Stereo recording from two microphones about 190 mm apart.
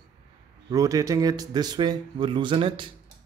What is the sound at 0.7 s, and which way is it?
Speech, 20° right (ahead or behind).